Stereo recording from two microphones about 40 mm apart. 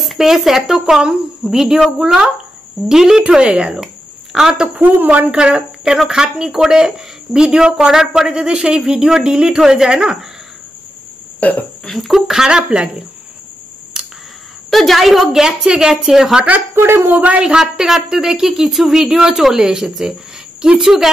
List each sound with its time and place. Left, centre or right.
0.0 s a woman's voice: centre
3.2 s speech: right
5.0 s a woman's voice: right
5.3 s speech: right
11.3 s speech: left
11.9 s a woman's voice: centre
12.4 s speech: right
14.0 s camera: centre
14.7 s a woman's voice: centre
15.4 s speech: centre
16.7 s speech: right
17.4 s speech: centre